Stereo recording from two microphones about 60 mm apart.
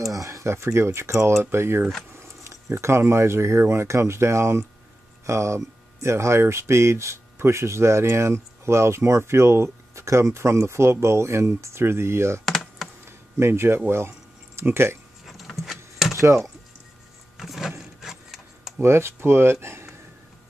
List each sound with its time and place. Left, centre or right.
0.1 s speech: right
12.4 s computer keyboard: centre
13.0 s a sound: right
13.8 s speech: right
15.2 s vehicle: centre
15.7 s a sound: centre
16.2 s speech: right
17.4 s a sound: centre
18.8 s speech: right